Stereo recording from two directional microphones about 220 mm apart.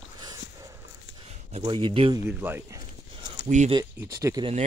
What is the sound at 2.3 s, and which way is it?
Speech, 10° right (ahead or behind).